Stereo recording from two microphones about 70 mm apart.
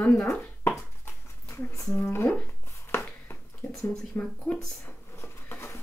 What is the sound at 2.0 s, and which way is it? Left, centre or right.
Speech, left.